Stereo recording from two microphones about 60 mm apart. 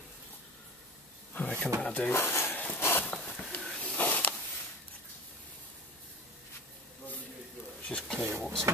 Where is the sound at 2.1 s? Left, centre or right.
Left.